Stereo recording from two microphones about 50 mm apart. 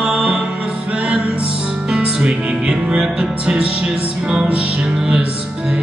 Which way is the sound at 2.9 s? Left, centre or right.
Centre.